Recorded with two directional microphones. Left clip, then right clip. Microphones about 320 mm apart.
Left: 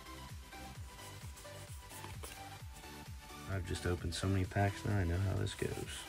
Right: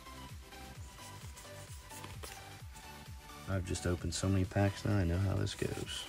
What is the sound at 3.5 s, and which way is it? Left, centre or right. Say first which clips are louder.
Speech: right 2 dB; centre.